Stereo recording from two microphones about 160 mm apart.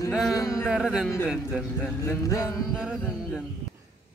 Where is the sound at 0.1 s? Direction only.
Centre (ahead or behind).